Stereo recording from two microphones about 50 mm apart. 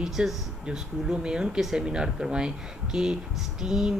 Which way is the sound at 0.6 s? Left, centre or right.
Centre.